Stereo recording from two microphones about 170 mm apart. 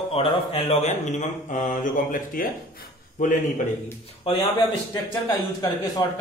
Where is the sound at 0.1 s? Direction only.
35° left (ahead or behind); by 3.3 s 50° left (ahead or behind).